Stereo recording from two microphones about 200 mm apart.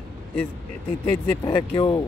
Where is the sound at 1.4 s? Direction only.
20° left (ahead or behind).